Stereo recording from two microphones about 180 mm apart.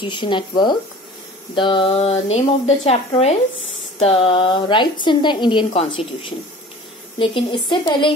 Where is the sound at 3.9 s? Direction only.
35° left (ahead or behind).